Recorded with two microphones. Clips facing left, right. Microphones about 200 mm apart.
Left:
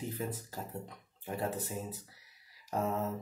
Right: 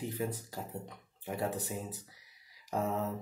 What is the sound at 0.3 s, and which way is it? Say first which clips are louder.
Speech: right 1 dB; 10° right (ahead or behind).